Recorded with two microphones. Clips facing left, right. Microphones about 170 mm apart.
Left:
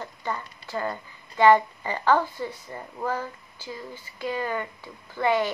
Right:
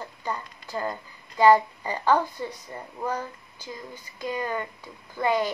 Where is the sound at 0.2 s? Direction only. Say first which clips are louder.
Even; 15° right (ahead or behind).